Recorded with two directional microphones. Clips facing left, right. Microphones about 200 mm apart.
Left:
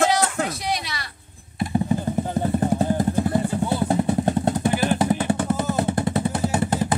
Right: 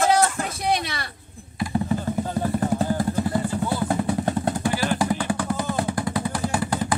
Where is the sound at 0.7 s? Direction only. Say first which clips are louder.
Right 3 dB; 55° right (ahead or behind).